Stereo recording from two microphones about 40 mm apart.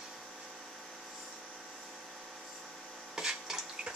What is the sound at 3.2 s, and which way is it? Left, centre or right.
Water, centre.